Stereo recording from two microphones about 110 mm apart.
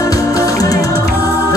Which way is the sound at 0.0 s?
30° left (ahead or behind).